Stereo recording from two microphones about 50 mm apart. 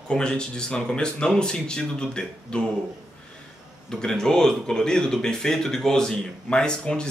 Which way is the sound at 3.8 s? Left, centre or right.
Centre.